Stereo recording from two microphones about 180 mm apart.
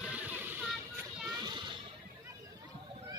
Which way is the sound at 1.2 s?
25° right (ahead or behind).